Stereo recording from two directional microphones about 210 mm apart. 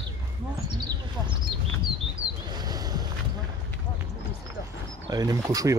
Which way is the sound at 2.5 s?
20° right (ahead or behind).